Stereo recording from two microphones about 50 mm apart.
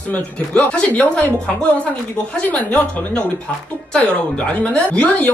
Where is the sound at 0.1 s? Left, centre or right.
Left.